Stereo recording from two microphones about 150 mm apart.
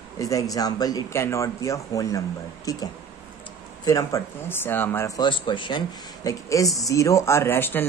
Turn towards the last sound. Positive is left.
turn(degrees=15)  # may be behind; listen again after turning